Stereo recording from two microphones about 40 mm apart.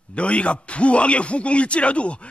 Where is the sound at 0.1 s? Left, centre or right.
Left.